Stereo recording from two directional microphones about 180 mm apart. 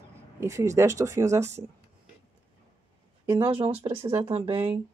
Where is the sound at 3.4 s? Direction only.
30° right (ahead or behind).